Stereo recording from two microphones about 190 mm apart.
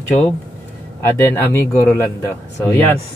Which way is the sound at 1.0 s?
10° left (ahead or behind).